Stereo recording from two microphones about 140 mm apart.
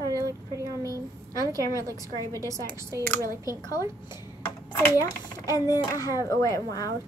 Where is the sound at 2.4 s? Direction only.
20° right (ahead or behind).